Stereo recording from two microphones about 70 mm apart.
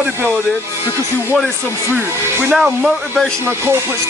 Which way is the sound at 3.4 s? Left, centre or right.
Right.